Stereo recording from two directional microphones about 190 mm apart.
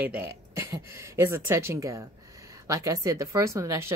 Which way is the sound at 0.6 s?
15° right (ahead or behind).